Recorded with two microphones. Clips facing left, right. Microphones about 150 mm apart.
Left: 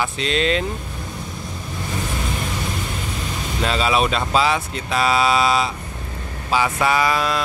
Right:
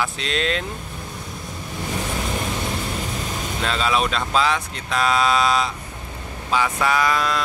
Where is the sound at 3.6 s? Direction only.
5° left (ahead or behind).